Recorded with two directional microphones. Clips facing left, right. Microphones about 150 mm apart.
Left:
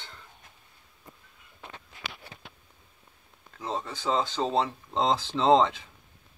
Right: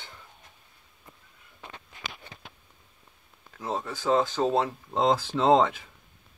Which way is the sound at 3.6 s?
5° right (ahead or behind).